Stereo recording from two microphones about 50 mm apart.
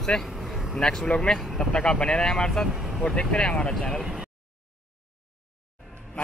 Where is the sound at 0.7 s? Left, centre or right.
Centre.